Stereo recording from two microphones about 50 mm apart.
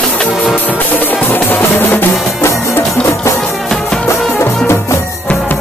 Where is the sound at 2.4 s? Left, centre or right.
Left.